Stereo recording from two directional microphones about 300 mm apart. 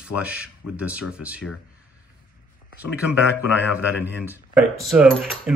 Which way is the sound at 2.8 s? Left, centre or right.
Centre.